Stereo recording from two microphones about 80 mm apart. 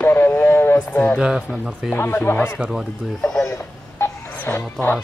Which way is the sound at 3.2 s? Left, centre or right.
Centre.